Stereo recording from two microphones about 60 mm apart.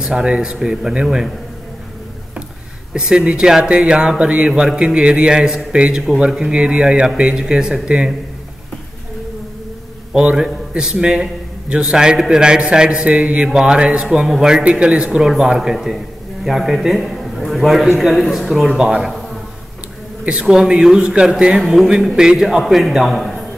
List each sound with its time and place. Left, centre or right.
0.0 s a man's voice: centre
2.9 s a man's voice: centre
10.1 s a man's voice: centre
14.0 s a man's voice: centre
20.2 s a man's voice: centre